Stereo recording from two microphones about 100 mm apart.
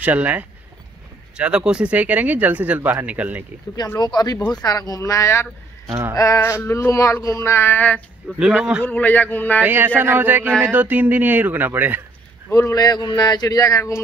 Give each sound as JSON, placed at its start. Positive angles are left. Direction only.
{"t": 0.0, "sound": "speech", "side_deg": -15}
{"t": 4.0, "sound": "speech", "side_deg": 45}
{"t": 8.4, "sound": "speech", "side_deg": -10}
{"t": 8.8, "sound": "a man's voice", "side_deg": 15}
{"t": 9.6, "sound": "speech", "side_deg": -20}
{"t": 12.4, "sound": "speech", "side_deg": 30}